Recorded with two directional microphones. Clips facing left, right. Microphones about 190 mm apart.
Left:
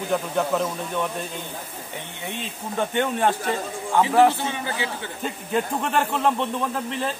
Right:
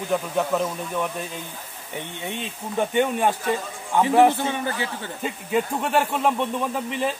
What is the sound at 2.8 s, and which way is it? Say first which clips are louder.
Speech: right 2 dB; 10° right (ahead or behind).